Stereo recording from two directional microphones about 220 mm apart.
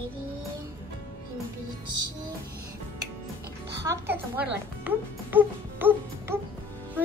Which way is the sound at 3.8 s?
10° right (ahead or behind).